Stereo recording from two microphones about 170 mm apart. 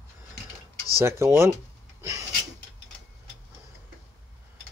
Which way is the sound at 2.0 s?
20° right (ahead or behind).